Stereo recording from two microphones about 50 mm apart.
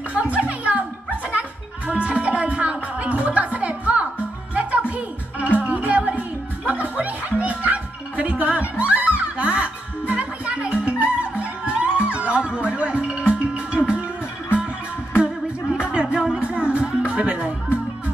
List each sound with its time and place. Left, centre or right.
0.1 s music: right
15.9 s music: right